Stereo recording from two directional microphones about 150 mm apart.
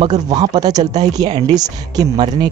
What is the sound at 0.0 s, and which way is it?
Speech, 25° right (ahead or behind).